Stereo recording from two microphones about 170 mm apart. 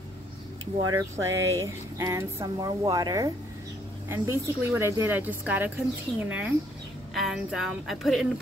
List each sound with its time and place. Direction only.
0.7 s a woman's voice: 25° right (ahead or behind); by 8.3 s centre (ahead or behind)